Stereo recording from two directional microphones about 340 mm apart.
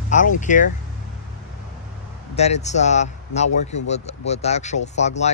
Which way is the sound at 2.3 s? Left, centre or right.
Centre.